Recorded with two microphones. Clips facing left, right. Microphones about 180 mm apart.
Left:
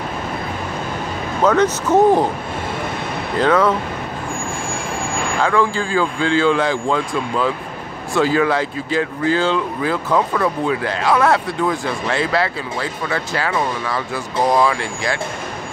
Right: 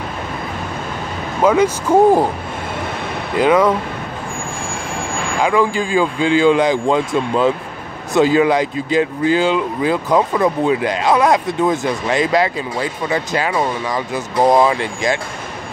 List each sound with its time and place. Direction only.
1.4 s speech: 10° right (ahead or behind)
3.3 s speech: 10° right (ahead or behind)
5.4 s speech: 15° right (ahead or behind)